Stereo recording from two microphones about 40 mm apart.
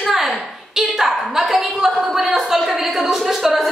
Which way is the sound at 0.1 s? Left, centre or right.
Centre.